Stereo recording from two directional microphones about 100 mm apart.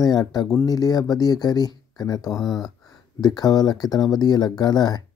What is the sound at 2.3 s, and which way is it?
Speech, centre (ahead or behind).